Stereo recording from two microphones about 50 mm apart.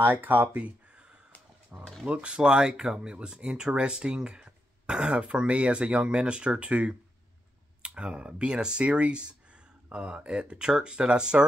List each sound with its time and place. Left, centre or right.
0.0 s speech: right
2.0 s speech: right